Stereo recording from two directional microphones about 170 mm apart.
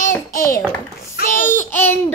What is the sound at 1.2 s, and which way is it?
Speech, 50° left (ahead or behind).